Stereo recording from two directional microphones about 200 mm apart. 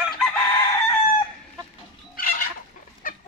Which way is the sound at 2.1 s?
45° left (ahead or behind).